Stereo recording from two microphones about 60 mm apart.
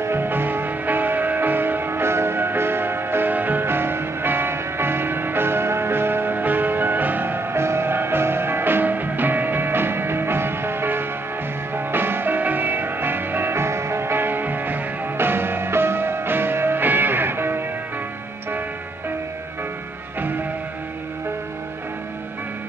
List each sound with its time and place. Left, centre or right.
0.0 s music: right